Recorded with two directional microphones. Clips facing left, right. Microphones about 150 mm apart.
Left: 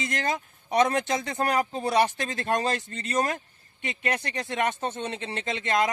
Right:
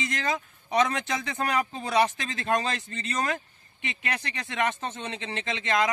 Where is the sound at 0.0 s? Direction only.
45° left (ahead or behind).